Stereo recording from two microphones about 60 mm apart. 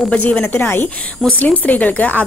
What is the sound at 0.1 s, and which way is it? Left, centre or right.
Speech, left.